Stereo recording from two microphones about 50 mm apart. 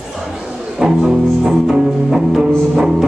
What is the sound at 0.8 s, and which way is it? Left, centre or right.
Music, centre.